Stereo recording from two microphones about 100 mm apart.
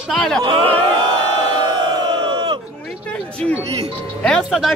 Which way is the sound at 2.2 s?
55° right (ahead or behind).